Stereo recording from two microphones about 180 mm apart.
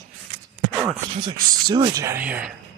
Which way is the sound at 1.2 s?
25° right (ahead or behind).